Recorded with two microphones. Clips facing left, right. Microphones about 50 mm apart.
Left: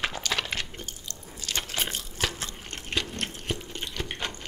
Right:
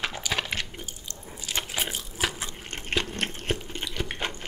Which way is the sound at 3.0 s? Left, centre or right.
Right.